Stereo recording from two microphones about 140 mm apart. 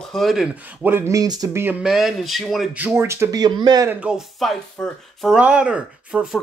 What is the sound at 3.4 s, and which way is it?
Speech, 30° right (ahead or behind).